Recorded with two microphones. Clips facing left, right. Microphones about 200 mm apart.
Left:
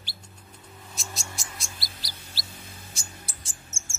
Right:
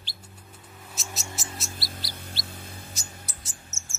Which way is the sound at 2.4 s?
55° right (ahead or behind).